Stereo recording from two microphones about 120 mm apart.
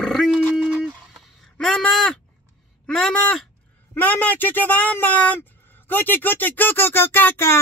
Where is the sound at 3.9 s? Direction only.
15° left (ahead or behind).